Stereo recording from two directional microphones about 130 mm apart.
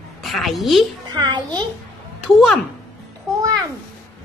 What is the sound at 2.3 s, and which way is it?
Speech, centre (ahead or behind).